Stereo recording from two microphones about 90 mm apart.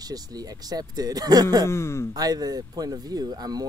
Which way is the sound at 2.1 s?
45° right (ahead or behind).